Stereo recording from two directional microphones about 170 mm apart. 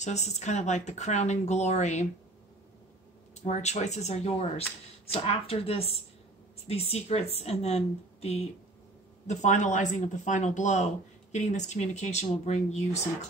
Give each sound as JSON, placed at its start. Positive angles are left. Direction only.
{"t": 0.0, "sound": "speech", "side_deg": 45}
{"t": 3.4, "sound": "speech", "side_deg": 45}